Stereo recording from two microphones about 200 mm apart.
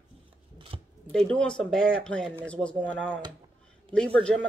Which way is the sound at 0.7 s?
25° right (ahead or behind).